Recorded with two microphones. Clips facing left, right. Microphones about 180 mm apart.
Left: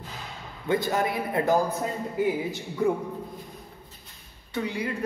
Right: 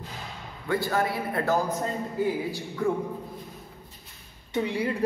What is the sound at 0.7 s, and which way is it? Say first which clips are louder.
A man's voice: left 1 dB; 20° left (ahead or behind).